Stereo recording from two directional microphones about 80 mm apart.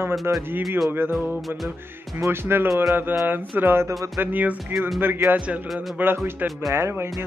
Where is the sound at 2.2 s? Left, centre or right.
Right.